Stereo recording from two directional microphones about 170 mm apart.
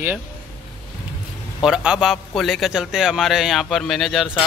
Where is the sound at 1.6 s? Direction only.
5° right (ahead or behind).